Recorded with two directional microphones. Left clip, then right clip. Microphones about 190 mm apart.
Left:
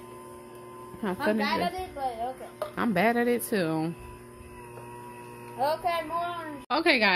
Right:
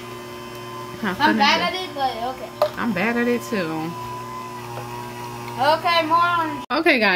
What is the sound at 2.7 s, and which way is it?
Speech, 40° left (ahead or behind).